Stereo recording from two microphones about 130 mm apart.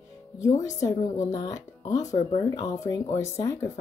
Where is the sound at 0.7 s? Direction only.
25° left (ahead or behind).